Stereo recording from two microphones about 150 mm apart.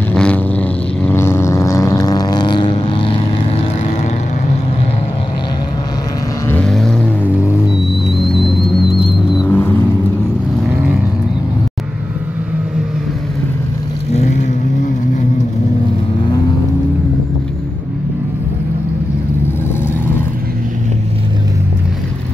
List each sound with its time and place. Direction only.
0.1 s vehicle: 5° left (ahead or behind); by 3.1 s 35° left (ahead or behind)
6.5 s vehicle: 5° left (ahead or behind)
9.5 s vehicle: 10° left (ahead or behind)